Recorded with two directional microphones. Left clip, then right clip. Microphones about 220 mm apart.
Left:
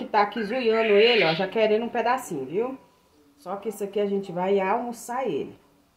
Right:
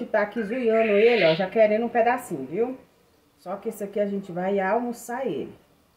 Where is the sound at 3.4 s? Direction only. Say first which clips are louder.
Left 1 dB; 20° left (ahead or behind).